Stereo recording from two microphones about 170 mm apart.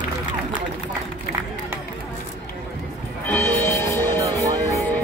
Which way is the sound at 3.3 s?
10° left (ahead or behind).